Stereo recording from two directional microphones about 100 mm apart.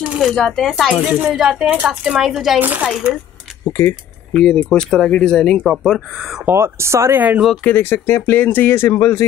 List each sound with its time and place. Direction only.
0.2 s speech: 5° left (ahead or behind)
2.6 s speech: 15° right (ahead or behind)
4.3 s speech: 10° left (ahead or behind)
6.4 s speech: 25° right (ahead or behind)
7.2 s speech: 15° right (ahead or behind)
7.6 s speech: 20° left (ahead or behind)